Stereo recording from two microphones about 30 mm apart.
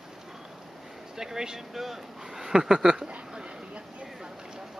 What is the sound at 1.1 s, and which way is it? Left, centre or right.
Speech, centre.